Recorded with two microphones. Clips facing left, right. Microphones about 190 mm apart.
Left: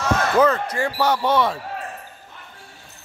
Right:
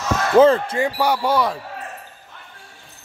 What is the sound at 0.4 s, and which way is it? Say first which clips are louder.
Speech: right 7 dB; 25° right (ahead or behind).